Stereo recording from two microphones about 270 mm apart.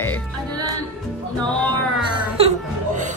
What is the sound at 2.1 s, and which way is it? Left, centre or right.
Speech, centre.